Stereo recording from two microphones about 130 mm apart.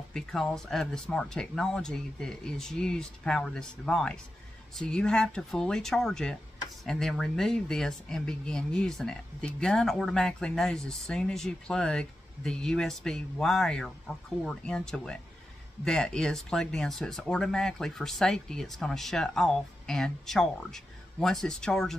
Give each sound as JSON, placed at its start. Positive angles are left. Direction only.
{"t": 0.1, "sound": "speech", "side_deg": 5}